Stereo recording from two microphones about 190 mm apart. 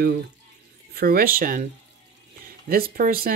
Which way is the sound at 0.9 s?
50° right (ahead or behind).